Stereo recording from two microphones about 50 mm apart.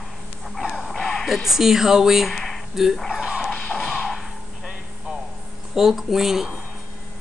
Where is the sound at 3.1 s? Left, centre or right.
Centre.